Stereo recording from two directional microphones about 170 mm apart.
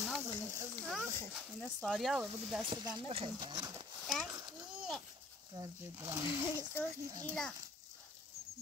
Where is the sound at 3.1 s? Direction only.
30° right (ahead or behind).